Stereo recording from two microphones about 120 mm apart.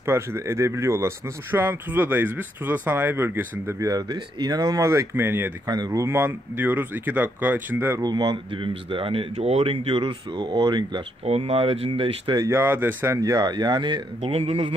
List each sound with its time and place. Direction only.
0.0 s speech: 20° right (ahead or behind)
3.8 s speech: 35° right (ahead or behind); by 5.5 s 20° right (ahead or behind)
5.7 s speech: 30° right (ahead or behind)
8.0 s speech: 35° right (ahead or behind); by 10.1 s 50° right (ahead or behind)
10.3 s speech: 40° right (ahead or behind)
11.2 s speech: 60° right (ahead or behind)
12.4 s speech: 20° right (ahead or behind)
13.2 s speech: 35° right (ahead or behind)
14.2 s speech: 55° right (ahead or behind)